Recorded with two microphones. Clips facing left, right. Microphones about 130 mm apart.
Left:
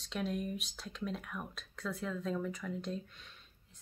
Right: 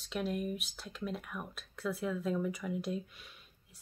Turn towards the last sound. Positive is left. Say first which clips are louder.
# right 1 dB
turn(degrees=-10)  # may be behind; listen again after turning